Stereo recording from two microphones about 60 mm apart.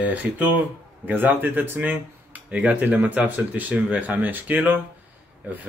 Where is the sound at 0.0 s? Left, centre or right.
Right.